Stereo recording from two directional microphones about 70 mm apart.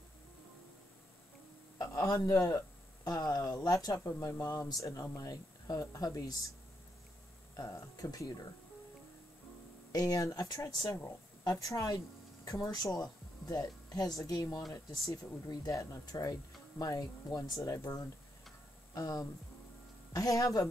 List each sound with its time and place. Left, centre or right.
1.8 s a sound: left
2.3 s speech: left
7.5 s speech: left
9.9 s speech: left
10.7 s speech: left
11.4 s speech: left
18.9 s speech: left